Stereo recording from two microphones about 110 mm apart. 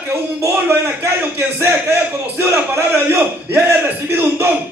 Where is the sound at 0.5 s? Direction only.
20° right (ahead or behind).